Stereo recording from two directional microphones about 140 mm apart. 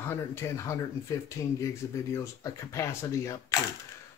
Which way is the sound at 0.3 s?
20° left (ahead or behind).